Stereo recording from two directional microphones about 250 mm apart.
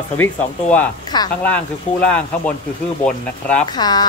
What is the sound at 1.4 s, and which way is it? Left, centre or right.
Speech, centre.